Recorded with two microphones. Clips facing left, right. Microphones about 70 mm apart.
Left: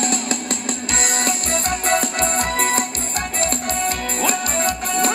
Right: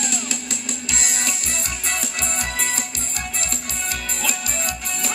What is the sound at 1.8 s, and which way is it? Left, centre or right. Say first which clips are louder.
Music: left 9 dB; left.